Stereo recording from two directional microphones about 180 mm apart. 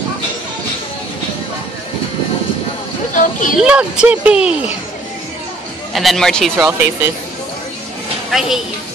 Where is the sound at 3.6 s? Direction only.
5° right (ahead or behind).